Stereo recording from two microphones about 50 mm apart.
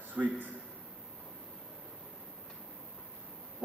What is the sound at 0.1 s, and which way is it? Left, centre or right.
Speech, right.